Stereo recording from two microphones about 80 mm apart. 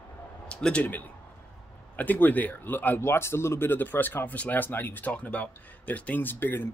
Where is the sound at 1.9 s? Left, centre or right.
Left.